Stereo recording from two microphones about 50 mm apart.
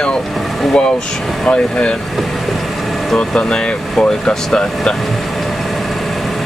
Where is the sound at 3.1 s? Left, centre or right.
Centre.